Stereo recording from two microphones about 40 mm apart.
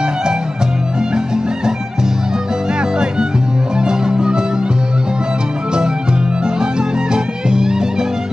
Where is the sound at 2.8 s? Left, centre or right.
Centre.